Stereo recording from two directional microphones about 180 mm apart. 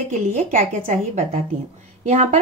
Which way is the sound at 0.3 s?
45° right (ahead or behind).